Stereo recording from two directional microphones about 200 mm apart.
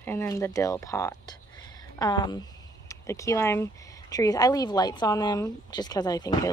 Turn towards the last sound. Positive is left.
turn(degrees=20)  # may be behind; listen again after turning